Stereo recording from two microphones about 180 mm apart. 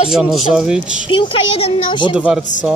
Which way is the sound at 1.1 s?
30° left (ahead or behind).